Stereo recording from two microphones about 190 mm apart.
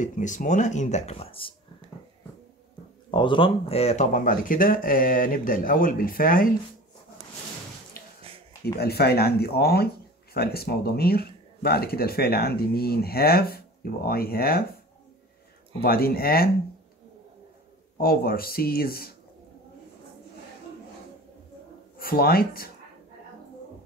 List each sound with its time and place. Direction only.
0.0 s speech: 40° left (ahead or behind)
3.1 s speech: 25° left (ahead or behind); by 6.5 s 45° left (ahead or behind)
8.0 s a sound: 50° left (ahead or behind)
8.7 s speech: 55° left (ahead or behind)
15.8 s speech: 55° left (ahead or behind)
17.9 s speech: 50° left (ahead or behind)
21.9 s speech: 50° left (ahead or behind)